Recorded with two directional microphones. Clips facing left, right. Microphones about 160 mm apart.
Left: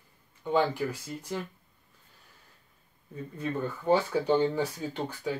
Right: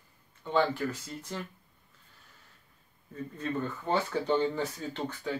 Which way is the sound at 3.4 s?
10° left (ahead or behind).